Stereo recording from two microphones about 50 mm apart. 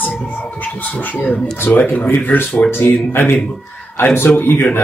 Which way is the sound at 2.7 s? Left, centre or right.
Left.